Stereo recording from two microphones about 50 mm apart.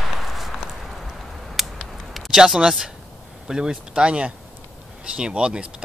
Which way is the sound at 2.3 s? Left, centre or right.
Centre.